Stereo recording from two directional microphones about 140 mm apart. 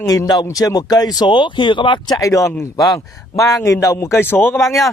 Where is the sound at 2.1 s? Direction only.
20° left (ahead or behind).